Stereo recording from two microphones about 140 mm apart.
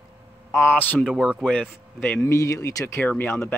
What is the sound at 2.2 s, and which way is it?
Speech, 20° left (ahead or behind).